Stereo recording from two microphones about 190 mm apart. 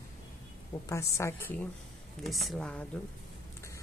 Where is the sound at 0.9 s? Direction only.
15° left (ahead or behind).